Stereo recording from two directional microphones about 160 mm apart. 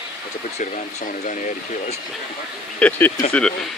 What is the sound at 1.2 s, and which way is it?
Speech, 55° left (ahead or behind).